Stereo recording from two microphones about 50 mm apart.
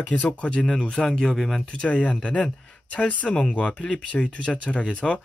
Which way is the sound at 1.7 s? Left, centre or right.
Left.